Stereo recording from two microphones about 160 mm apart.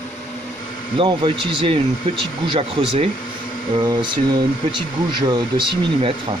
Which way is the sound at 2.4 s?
35° right (ahead or behind).